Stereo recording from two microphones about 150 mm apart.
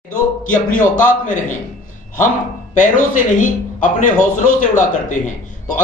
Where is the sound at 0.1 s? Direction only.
60° left (ahead or behind).